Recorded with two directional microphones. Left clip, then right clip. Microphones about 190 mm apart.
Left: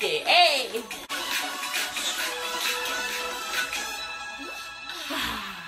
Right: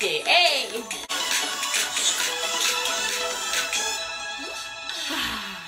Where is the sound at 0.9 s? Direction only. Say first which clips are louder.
Right 4 dB; 45° right (ahead or behind).